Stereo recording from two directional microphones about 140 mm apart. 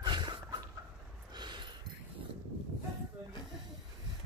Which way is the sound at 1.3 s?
30° right (ahead or behind).